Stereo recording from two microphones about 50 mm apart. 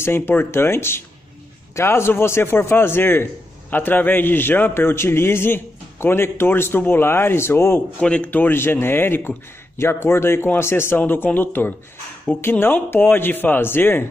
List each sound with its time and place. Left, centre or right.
0.0 s a man's voice: left
8.0 s speech: left
8.3 s a man's voice: left
8.5 s a man's voice: left
11.0 s a man's voice: left